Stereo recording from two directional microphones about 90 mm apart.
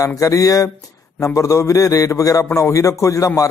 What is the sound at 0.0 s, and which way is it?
A man's voice, 40° left (ahead or behind).